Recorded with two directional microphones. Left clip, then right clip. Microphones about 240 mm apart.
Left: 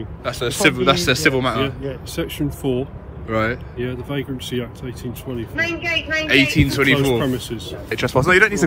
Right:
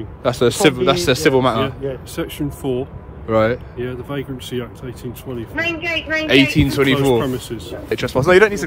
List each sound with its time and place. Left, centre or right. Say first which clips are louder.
0.2 s speech: right 4 dB; right
5.6 s a man's voice: even; right
6.2 s speech: right 2 dB; centre